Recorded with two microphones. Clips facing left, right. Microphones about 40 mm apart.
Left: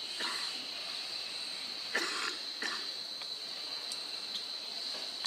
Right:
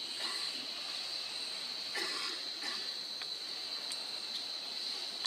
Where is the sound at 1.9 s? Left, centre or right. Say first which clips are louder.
Left 5 dB; left.